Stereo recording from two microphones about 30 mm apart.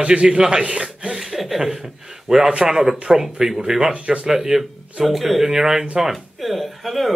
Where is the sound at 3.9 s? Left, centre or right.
Right.